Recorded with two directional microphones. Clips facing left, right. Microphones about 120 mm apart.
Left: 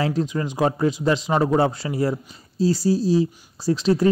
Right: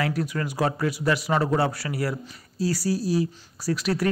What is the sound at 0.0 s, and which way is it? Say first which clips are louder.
Speech: left 4 dB; 25° left (ahead or behind).